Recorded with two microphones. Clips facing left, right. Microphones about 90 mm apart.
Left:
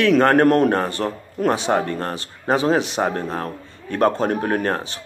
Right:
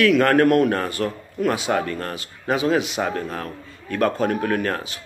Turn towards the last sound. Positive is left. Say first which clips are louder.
# left 2 dB
turn(degrees=30)  # may be behind; listen again after turning